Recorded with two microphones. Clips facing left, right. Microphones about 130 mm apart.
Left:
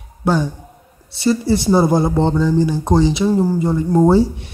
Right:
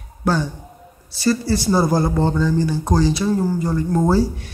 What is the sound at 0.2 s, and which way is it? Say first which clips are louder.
A man's voice: left 3 dB; 20° left (ahead or behind).